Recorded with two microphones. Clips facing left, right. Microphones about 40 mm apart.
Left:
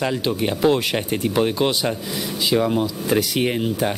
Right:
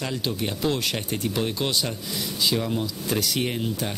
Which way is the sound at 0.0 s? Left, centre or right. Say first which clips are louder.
Left 6 dB; left.